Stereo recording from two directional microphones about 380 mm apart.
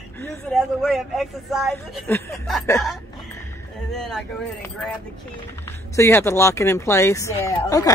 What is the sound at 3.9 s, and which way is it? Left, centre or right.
Speech, centre.